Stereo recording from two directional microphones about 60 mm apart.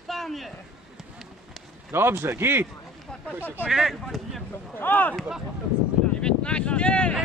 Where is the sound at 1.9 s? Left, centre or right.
Right.